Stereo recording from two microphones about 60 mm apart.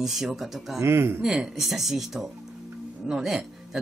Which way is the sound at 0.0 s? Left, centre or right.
Centre.